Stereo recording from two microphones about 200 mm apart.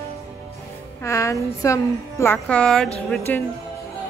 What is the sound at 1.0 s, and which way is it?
A woman's voice, 15° left (ahead or behind).